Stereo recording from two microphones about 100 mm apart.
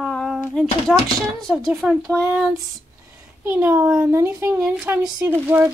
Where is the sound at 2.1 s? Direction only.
20° right (ahead or behind).